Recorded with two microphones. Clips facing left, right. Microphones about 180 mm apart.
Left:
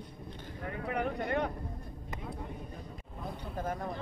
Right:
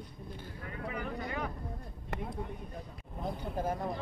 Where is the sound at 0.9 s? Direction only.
65° left (ahead or behind).